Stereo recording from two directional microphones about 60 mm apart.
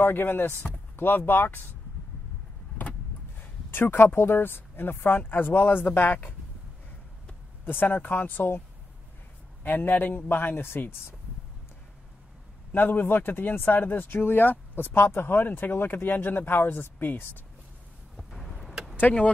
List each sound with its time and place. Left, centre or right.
0.0 s speech: left
3.3 s speech: left
7.6 s speech: left
12.7 s speech: left
18.1 s vehicle: centre